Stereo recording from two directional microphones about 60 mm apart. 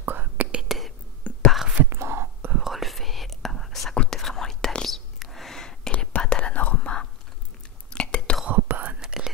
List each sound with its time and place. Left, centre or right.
0.0 s whispering: right
0.6 s whispering: centre
1.3 s whispering: left
1.9 s whispering: right
2.5 s whispering: centre
3.9 s whispering: centre
4.2 s whispering: centre
8.6 s whispering: right
9.0 s whispering: centre